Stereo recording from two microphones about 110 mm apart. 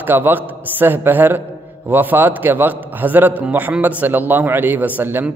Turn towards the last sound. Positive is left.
turn(degrees=-15)  # may be behind; listen again after turning